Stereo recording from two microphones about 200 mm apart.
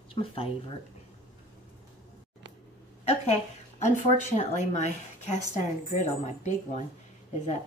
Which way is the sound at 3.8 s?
35° left (ahead or behind).